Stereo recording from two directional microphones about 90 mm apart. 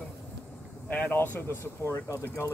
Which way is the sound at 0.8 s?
20° left (ahead or behind).